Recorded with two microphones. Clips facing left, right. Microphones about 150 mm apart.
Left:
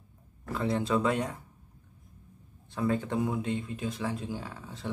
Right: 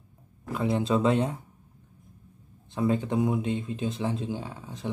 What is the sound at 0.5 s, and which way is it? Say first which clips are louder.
Speech: right 3 dB; 15° right (ahead or behind).